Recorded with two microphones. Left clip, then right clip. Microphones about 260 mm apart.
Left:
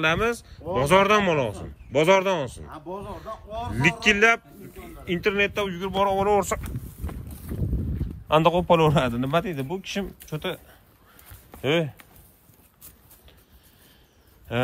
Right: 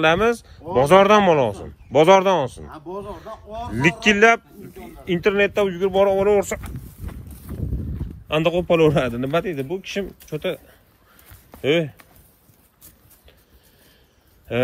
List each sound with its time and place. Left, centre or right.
0.0 s speech: centre
8.3 s a man's voice: centre
14.5 s a man's voice: centre